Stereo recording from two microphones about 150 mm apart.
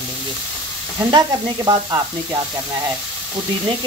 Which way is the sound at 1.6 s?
25° right (ahead or behind).